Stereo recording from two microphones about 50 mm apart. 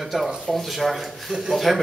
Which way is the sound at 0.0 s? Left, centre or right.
Centre.